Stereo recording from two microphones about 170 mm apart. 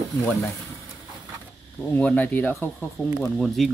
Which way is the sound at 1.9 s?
10° left (ahead or behind).